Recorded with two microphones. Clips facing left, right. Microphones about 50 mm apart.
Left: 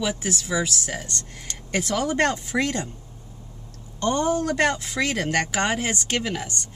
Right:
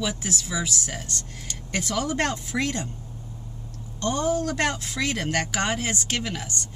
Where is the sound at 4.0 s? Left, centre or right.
Centre.